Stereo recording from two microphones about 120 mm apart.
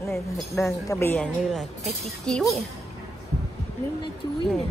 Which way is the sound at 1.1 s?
5° left (ahead or behind).